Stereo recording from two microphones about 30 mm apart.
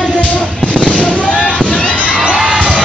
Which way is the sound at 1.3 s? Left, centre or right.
Left.